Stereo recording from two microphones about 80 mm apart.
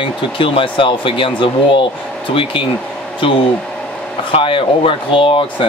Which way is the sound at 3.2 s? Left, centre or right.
Left.